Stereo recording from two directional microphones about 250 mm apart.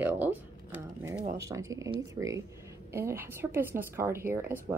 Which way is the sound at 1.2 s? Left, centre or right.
Right.